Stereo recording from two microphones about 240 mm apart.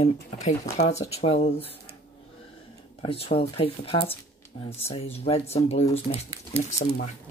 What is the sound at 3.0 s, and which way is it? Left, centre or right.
Speech, left.